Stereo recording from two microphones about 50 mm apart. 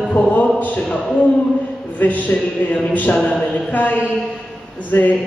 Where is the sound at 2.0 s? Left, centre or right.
Left.